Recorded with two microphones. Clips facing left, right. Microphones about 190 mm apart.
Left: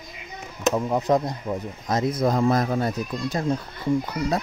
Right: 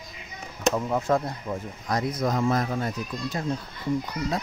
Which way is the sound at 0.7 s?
15° left (ahead or behind).